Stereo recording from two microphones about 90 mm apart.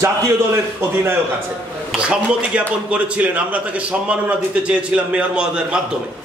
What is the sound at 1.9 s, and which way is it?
A man's voice, 10° right (ahead or behind).